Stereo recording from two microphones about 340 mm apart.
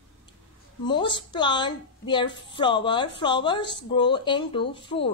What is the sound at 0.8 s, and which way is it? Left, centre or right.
A woman's voice, centre.